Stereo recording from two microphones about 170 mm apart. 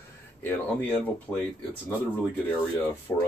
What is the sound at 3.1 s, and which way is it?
Speech, 10° left (ahead or behind).